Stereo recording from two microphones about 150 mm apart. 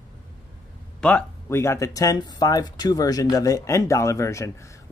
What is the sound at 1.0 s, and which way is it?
Speech, 10° left (ahead or behind).